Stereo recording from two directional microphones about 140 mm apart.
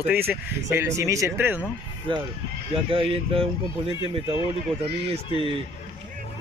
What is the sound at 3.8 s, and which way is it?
Speech, 35° left (ahead or behind).